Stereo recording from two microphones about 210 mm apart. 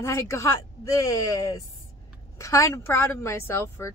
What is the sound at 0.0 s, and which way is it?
Speech, 15° left (ahead or behind).